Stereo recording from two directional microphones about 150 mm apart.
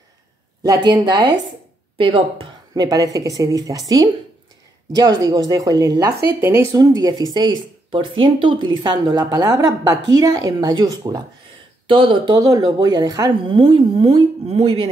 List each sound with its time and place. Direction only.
0.7 s speech: 25° right (ahead or behind)
5.2 s a woman's voice: 25° right (ahead or behind)
12.4 s a woman's voice: 25° right (ahead or behind); by 14.9 s 40° right (ahead or behind)